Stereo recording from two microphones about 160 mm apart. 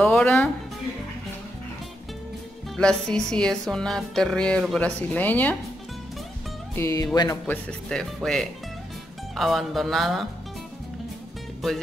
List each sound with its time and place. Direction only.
0.0 s music: 5° left (ahead or behind)
2.7 s music: 5° left (ahead or behind)
6.7 s speech: 20° left (ahead or behind)
7.4 s music: 5° left (ahead or behind)